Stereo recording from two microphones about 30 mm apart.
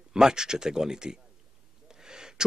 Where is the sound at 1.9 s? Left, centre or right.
Right.